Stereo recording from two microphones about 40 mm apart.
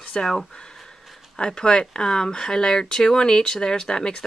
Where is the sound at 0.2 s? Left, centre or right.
Left.